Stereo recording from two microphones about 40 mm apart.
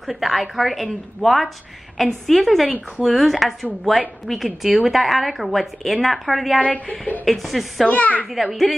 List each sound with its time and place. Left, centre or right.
0.0 s a woman's voice: centre
3.3 s a woman's voice: centre
6.6 s a woman's voice: left
7.2 s a woman's voice: centre
7.8 s a woman's voice: left
8.3 s a woman's voice: centre